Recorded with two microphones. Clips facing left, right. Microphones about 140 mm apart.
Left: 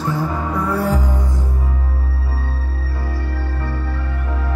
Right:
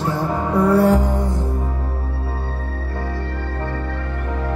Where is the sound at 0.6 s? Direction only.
35° right (ahead or behind).